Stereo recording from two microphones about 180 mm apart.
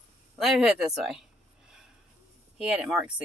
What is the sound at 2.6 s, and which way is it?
Speech, 5° right (ahead or behind).